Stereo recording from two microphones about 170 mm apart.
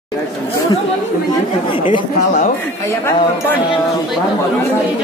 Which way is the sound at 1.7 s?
30° left (ahead or behind).